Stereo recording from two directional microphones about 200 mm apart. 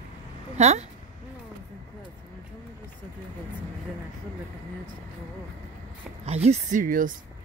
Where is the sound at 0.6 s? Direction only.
35° right (ahead or behind).